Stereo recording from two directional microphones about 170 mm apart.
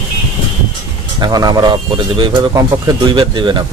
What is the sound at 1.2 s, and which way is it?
Speech, 25° right (ahead or behind).